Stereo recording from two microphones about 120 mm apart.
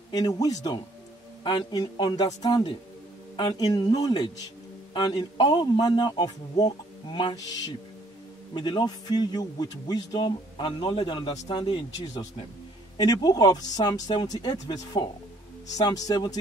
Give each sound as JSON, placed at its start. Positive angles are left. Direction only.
{"t": 0.1, "sound": "speech", "side_deg": 30}
{"t": 1.4, "sound": "speech", "side_deg": 40}
{"t": 8.5, "sound": "speech", "side_deg": 35}
{"t": 12.9, "sound": "speech", "side_deg": 35}